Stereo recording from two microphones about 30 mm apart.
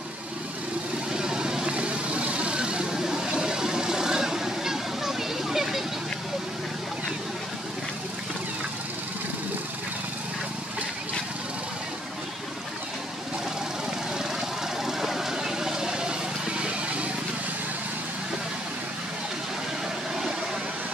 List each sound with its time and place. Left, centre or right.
1.1 s vehicle: right
1.7 s vehicle: right
2.9 s vehicle: right
14.9 s vehicle: centre; by 17.1 s right